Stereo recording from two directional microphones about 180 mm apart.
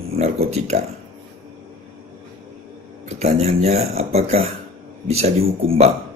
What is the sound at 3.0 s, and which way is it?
Speech, 35° right (ahead or behind).